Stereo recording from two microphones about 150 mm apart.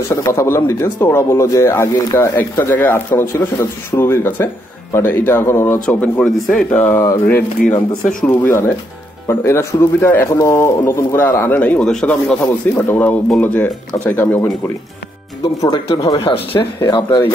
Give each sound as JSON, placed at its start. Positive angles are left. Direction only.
{"t": 0.1, "sound": "speech", "side_deg": 20}
{"t": 15.6, "sound": "speech", "side_deg": 25}